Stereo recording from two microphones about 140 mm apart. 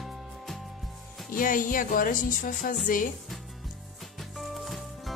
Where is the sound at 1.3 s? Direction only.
75° left (ahead or behind).